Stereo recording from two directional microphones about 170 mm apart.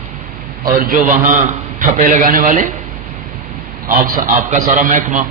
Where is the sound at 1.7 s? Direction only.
50° right (ahead or behind).